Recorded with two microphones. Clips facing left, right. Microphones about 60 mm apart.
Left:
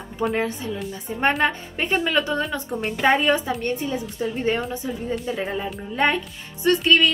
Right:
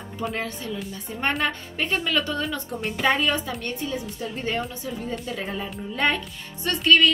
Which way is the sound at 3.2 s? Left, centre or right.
Left.